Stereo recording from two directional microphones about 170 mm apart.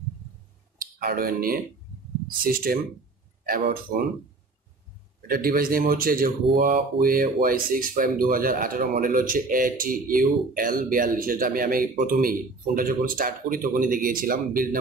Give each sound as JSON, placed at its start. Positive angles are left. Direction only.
{"t": 0.7, "sound": "speech", "side_deg": -60}
{"t": 5.2, "sound": "speech", "side_deg": -60}